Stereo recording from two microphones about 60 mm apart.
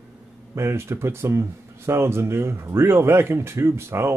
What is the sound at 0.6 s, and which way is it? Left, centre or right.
Speech, right.